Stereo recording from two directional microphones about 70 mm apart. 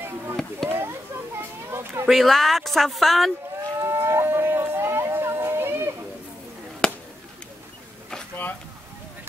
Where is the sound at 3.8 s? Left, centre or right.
Right.